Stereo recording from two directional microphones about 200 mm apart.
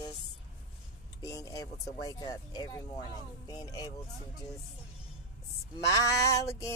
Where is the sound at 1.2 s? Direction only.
15° left (ahead or behind).